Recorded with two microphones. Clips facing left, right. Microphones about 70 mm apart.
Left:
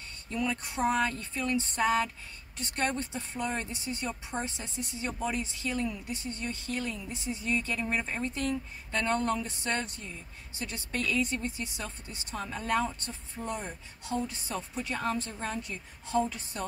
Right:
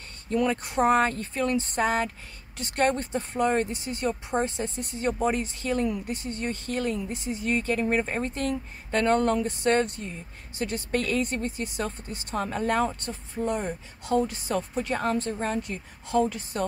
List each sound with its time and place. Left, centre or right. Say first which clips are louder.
0.3 s speech: right 7 dB; right
2.6 s speech: right 7 dB; right